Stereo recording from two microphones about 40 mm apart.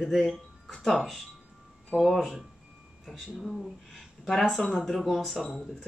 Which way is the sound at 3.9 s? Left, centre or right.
Centre.